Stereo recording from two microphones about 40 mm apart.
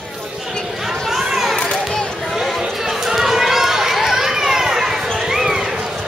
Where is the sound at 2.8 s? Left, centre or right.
Centre.